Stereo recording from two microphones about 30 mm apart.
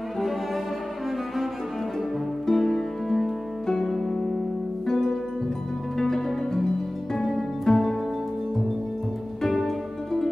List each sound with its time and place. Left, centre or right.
2.5 s music: centre
5.9 s music: centre
9.4 s music: centre